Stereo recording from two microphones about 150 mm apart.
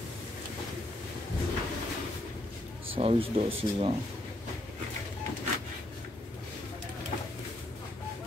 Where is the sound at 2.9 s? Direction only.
40° right (ahead or behind).